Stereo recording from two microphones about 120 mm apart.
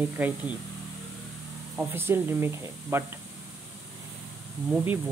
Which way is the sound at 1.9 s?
20° right (ahead or behind).